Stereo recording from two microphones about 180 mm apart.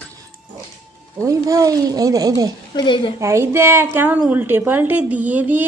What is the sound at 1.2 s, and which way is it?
A child's voice, 20° right (ahead or behind).